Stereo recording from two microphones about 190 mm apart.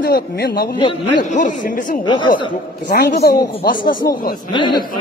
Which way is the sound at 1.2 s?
40° left (ahead or behind).